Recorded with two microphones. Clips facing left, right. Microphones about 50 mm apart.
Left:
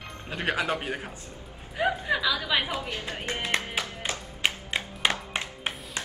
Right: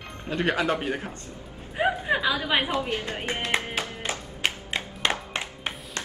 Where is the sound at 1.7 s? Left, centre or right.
Right.